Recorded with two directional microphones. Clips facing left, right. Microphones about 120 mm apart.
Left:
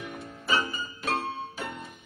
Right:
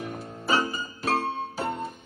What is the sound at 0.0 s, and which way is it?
Music, 35° right (ahead or behind).